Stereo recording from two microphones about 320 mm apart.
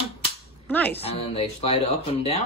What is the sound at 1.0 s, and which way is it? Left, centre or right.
Speech, centre.